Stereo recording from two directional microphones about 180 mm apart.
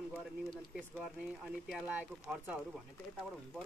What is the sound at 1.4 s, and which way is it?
Speech, 5° right (ahead or behind).